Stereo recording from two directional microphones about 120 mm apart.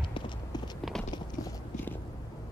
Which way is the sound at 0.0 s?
40° left (ahead or behind).